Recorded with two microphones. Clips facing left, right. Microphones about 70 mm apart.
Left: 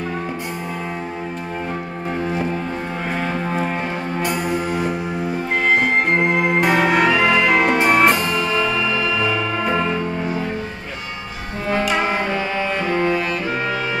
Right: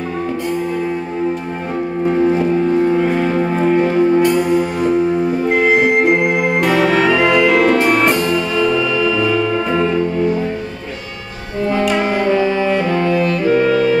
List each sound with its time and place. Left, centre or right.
3.0 s music: centre
4.2 s music: centre
5.5 s music: centre
6.6 s music: centre
7.5 s music: centre
12.9 s saxophone: centre
13.5 s music: centre